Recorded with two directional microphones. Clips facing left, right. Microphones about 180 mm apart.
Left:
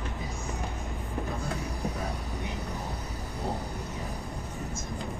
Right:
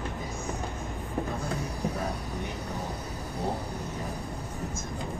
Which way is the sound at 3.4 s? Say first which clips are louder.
Right 1 dB; centre (ahead or behind).